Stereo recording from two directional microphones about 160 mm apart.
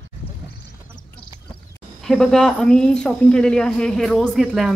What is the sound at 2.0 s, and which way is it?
A woman's voice, 5° left (ahead or behind).